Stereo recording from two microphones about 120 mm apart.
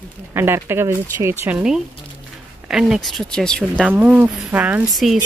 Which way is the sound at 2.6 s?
5° right (ahead or behind).